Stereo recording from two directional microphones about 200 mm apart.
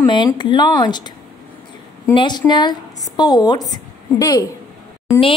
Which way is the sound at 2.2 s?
20° left (ahead or behind).